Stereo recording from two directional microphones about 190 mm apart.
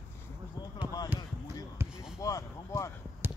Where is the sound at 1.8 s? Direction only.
15° right (ahead or behind).